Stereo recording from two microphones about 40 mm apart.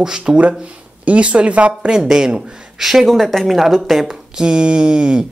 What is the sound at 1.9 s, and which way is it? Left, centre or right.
Speech, centre.